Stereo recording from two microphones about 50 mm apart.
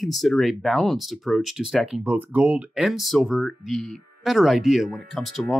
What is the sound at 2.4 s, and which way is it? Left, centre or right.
Speech, right.